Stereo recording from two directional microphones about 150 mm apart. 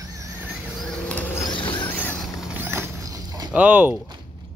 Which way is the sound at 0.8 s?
5° left (ahead or behind).